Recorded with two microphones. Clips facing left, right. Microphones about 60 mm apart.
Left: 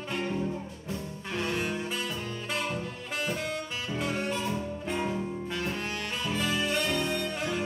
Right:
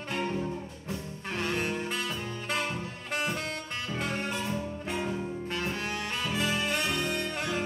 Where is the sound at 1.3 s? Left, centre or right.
Right.